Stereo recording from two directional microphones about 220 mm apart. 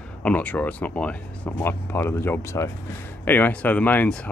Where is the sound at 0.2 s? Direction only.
5° left (ahead or behind).